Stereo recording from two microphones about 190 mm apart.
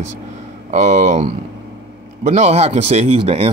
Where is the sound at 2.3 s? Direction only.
35° right (ahead or behind).